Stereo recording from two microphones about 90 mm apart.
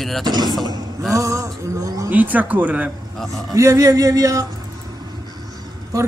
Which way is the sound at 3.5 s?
35° right (ahead or behind).